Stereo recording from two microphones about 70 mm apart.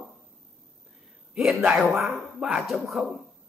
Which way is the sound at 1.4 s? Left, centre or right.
Centre.